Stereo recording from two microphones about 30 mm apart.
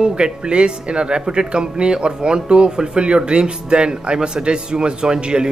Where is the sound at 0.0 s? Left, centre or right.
Right.